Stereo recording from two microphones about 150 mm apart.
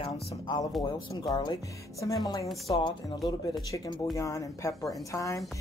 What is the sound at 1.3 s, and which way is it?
Speech, 30° left (ahead or behind).